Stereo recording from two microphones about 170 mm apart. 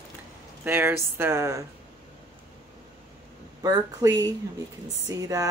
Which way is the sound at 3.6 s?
20° right (ahead or behind).